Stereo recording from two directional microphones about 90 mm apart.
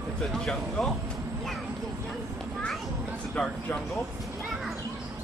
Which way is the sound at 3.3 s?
15° left (ahead or behind).